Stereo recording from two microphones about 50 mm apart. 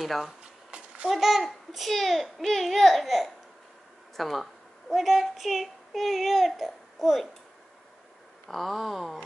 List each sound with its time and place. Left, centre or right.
0.0 s a child's voice: centre
0.4 s a sound: right
1.1 s a child's voice: centre
8.5 s a child's voice: centre